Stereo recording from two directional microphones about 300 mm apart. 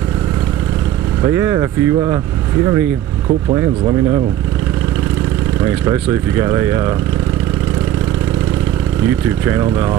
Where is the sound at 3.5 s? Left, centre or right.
Centre.